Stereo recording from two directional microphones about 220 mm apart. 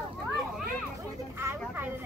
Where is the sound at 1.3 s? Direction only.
10° right (ahead or behind).